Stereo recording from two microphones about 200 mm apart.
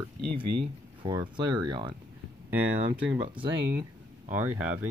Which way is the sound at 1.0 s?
20° right (ahead or behind).